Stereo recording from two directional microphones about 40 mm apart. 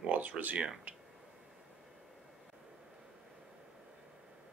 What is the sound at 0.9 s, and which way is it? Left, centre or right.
Speech, right.